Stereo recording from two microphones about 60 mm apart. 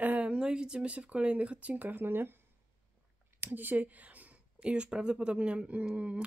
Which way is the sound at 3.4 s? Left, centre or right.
Right.